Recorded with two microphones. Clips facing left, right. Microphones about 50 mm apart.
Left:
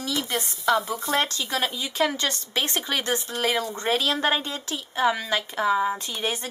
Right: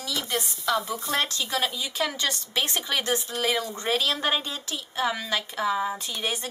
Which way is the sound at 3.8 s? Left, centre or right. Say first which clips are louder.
Left 2 dB; centre.